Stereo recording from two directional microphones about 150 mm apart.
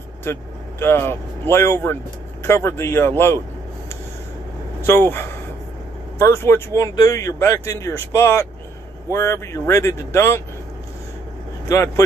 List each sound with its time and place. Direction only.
0.2 s speech: 15° left (ahead or behind)
4.8 s speech: 15° left (ahead or behind)